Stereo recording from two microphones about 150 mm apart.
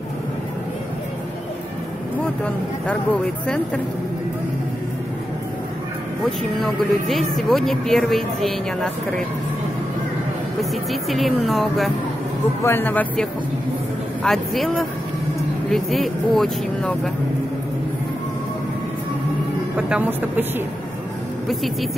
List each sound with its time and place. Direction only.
2.2 s speech: 10° left (ahead or behind)
6.6 s a man's voice: centre (ahead or behind)
10.6 s a man's voice: centre (ahead or behind)
12.6 s a man's voice: 15° left (ahead or behind)
19.9 s speech: 10° right (ahead or behind)